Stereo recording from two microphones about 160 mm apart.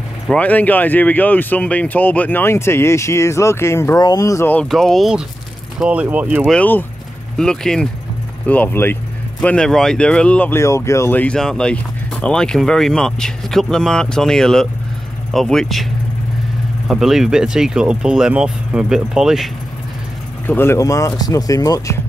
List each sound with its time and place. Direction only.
0.3 s speech: 10° left (ahead or behind)
4.6 s speech: centre (ahead or behind)
6.5 s speech: 10° left (ahead or behind)
20.4 s speech: 15° left (ahead or behind)